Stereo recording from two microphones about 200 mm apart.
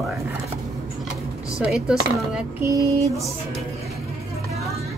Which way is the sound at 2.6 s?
15° right (ahead or behind).